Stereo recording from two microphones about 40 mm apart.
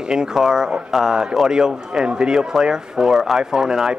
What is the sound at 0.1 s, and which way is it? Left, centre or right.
Speech, centre.